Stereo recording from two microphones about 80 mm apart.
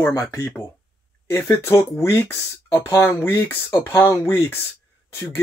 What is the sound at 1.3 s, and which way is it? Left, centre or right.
Speech, left.